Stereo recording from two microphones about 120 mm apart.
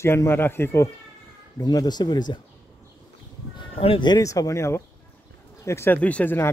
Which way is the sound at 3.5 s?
45° left (ahead or behind).